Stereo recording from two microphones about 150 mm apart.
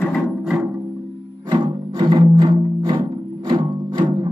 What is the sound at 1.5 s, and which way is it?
Music, 30° right (ahead or behind).